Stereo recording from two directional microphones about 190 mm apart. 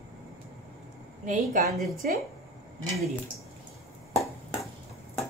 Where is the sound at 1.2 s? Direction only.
45° right (ahead or behind).